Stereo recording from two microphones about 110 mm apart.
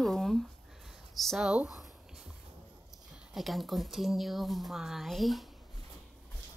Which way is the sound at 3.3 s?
Centre (ahead or behind).